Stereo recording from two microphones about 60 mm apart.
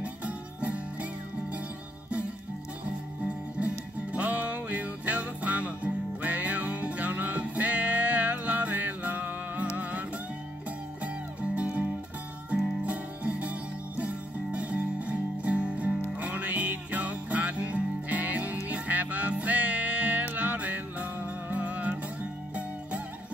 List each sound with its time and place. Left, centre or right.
0.0 s music: right
3.5 s music: right